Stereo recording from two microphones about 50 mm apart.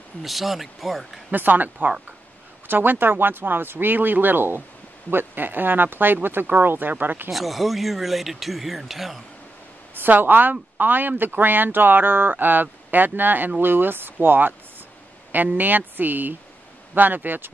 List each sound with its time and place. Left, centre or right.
0.2 s speech: centre
1.3 s speech: right
7.2 s speech: centre
9.9 s speech: right